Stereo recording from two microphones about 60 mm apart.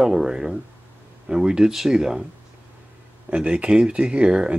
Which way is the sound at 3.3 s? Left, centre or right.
Centre.